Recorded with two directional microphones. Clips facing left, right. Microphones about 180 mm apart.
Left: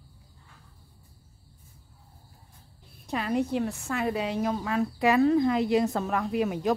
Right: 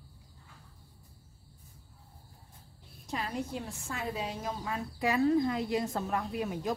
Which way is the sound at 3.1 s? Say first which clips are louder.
Left 8 dB; 65° left (ahead or behind).